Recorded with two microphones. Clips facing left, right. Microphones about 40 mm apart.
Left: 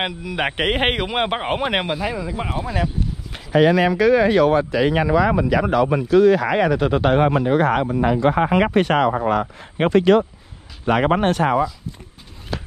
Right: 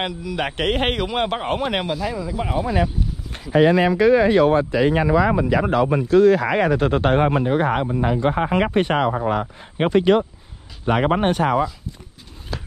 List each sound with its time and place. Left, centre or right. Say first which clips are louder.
0.0 s speech: left 1 dB; centre
2.5 s speech: right 4 dB; centre
3.5 s a man's voice: even; left
6.1 s a man's voice: even; left
10.9 s speech: left 1 dB; left